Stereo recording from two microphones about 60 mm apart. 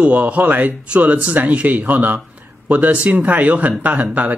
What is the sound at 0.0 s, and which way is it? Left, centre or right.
Speech, right.